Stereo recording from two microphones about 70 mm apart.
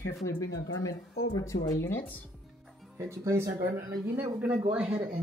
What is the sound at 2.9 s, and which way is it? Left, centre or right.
Speech, right.